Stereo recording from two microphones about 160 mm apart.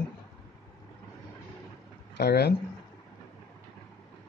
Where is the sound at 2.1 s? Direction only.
90° left.